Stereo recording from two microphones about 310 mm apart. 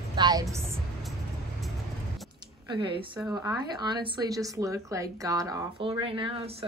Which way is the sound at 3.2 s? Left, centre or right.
Centre.